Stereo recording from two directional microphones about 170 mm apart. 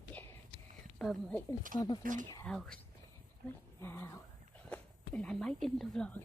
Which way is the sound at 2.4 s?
5° left (ahead or behind).